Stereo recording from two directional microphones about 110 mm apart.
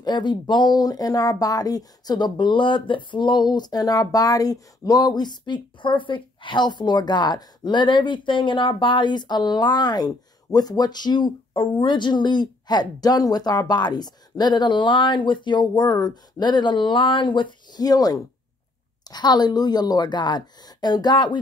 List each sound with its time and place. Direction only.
0.0 s speech: 45° left (ahead or behind)